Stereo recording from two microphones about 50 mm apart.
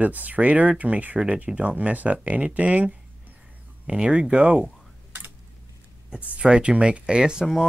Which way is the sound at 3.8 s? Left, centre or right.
Centre.